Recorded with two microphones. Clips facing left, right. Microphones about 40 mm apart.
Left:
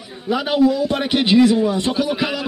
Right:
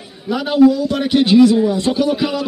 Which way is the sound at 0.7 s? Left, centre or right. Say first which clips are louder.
Right 3 dB; centre.